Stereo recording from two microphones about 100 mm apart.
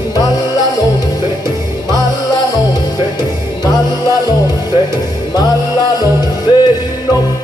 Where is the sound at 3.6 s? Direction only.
40° left (ahead or behind).